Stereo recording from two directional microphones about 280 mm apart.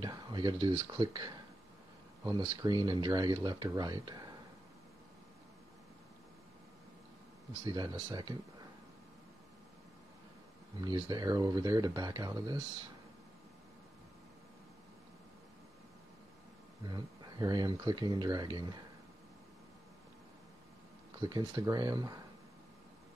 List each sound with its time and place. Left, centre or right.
0.0 s speech: centre
7.6 s speech: centre
10.8 s speech: centre
16.8 s speech: centre
21.2 s speech: centre